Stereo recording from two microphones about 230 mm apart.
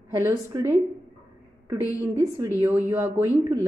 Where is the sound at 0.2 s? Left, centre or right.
Centre.